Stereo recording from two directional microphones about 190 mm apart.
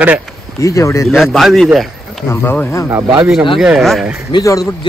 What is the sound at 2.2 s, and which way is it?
Speech, 15° left (ahead or behind).